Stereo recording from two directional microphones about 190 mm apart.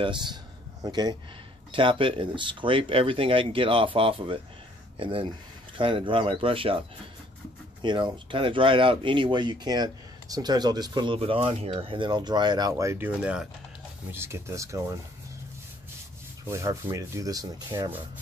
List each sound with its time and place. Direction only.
0.0 s speech: 25° right (ahead or behind)
7.8 s speech: 25° right (ahead or behind)
16.4 s speech: 15° right (ahead or behind)